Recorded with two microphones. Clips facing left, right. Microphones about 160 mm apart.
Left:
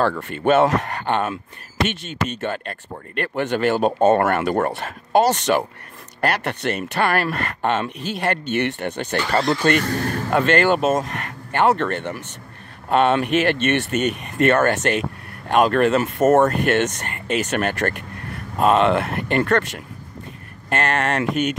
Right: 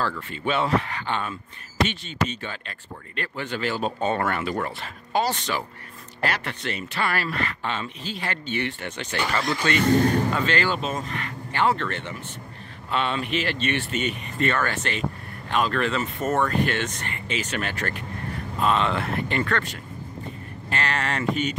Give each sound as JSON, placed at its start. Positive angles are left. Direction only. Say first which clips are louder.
{"t": 0.0, "sound": "speech", "louder": "left 8 dB", "side_deg": 55}
{"t": 2.4, "sound": "speech", "louder": "left 9 dB", "side_deg": 50}
{"t": 6.2, "sound": "speech", "louder": "left 6 dB", "side_deg": 60}
{"t": 11.1, "sound": "speech", "louder": "left 2 dB", "side_deg": 50}
{"t": 20.7, "sound": "speech", "louder": "left 6 dB", "side_deg": 55}